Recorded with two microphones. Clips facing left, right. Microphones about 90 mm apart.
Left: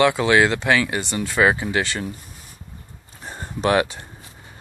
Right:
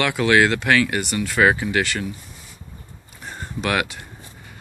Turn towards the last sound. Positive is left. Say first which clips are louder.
# left 4 dB
turn(degrees=30)  # may be behind; listen again after turning